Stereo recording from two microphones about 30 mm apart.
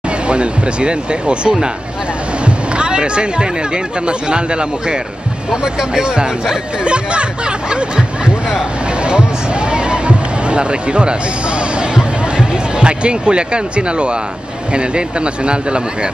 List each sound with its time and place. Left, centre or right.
0.3 s speech: right
5.5 s speech: right
9.7 s a sound: right
14.7 s speech: right